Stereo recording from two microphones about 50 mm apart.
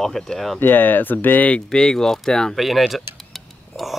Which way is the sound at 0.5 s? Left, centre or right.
Left.